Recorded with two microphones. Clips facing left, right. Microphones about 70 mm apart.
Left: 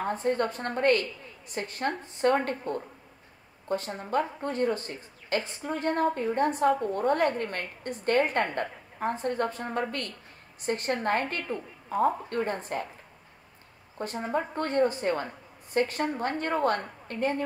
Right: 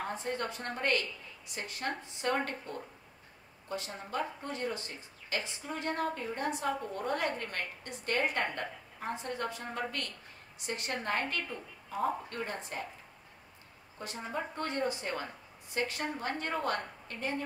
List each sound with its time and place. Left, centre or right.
0.0 s speech: left
13.9 s a woman's voice: left